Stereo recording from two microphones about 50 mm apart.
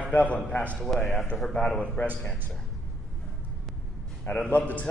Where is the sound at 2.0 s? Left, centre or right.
Left.